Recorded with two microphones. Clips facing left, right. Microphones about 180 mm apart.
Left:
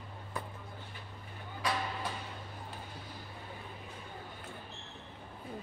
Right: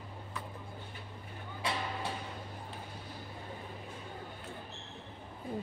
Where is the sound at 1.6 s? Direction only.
25° right (ahead or behind).